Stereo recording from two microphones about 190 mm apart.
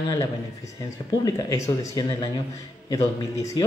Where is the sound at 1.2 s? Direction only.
15° left (ahead or behind).